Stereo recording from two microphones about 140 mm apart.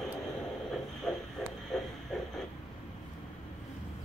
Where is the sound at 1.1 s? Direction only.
5° left (ahead or behind).